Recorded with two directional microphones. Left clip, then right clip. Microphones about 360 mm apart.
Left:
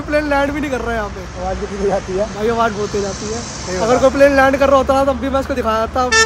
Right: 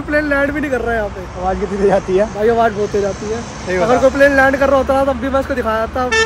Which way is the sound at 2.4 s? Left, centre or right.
Centre.